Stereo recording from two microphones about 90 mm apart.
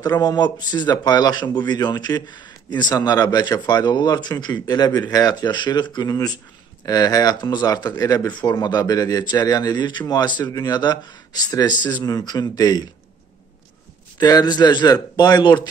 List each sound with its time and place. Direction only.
0.0 s speech: 45° left (ahead or behind)
14.1 s speech: 50° left (ahead or behind)